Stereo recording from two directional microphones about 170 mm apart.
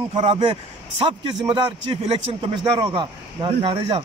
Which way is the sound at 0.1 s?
35° right (ahead or behind).